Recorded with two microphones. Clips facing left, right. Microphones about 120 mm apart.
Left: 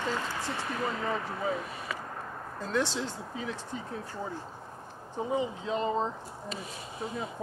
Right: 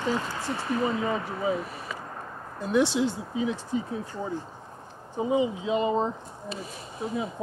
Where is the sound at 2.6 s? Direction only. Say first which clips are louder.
Right 7 dB; 15° right (ahead or behind).